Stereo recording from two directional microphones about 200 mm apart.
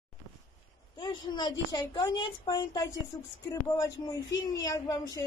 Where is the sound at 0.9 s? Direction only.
20° left (ahead or behind).